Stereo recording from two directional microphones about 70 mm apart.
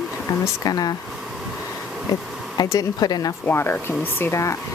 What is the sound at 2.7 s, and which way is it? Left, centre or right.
Speech, left.